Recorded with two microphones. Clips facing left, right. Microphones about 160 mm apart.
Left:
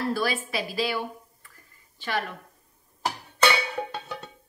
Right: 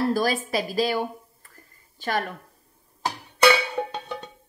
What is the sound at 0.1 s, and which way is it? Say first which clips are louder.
A woman's voice: right 4 dB; 40° right (ahead or behind).